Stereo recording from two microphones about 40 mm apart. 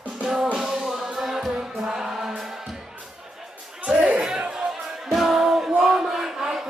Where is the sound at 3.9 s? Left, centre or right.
Right.